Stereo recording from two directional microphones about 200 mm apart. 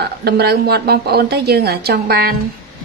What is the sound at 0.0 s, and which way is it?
Speech, 50° right (ahead or behind).